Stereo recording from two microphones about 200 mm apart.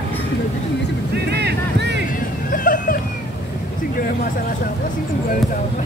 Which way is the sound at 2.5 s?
45° left (ahead or behind).